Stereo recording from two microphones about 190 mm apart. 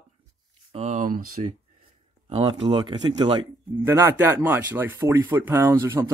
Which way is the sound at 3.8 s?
10° right (ahead or behind).